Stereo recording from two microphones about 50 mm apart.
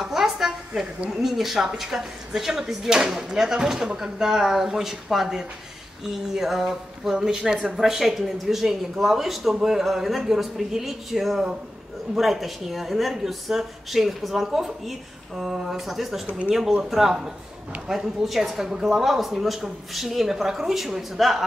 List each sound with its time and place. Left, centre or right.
0.0 s a sound: centre
1.2 s speech: centre
16.3 s speech: right
16.9 s speech: centre